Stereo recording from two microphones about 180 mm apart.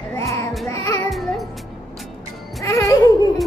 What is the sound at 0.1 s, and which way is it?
Music, 15° left (ahead or behind).